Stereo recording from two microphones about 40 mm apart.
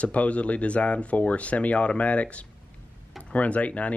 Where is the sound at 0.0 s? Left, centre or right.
Left.